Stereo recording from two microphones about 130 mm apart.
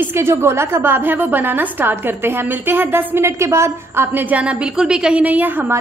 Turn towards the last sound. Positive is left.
turn(degrees=-15)  # may be behind; listen again after turning